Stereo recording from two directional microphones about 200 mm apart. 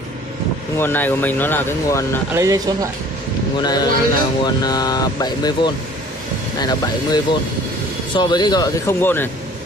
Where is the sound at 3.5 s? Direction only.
20° left (ahead or behind).